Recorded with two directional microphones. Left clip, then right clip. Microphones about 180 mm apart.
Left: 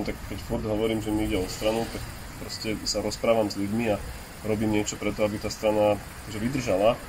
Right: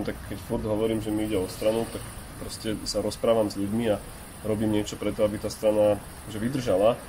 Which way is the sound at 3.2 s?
15° right (ahead or behind).